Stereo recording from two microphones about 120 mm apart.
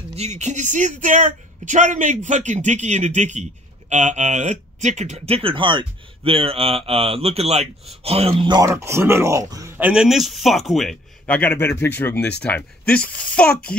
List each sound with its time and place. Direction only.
0.1 s speech: 65° right (ahead or behind)
8.6 s speech: 25° right (ahead or behind)
9.8 s speech: 15° right (ahead or behind)
10.0 s speech: centre (ahead or behind)